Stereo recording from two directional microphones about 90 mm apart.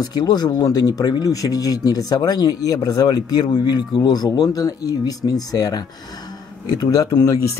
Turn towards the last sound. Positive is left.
turn(degrees=45)  # may be behind; listen again after turning